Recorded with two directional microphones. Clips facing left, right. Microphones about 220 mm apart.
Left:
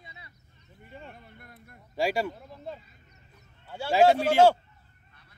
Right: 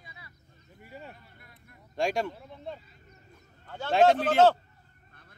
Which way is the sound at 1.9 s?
5° left (ahead or behind).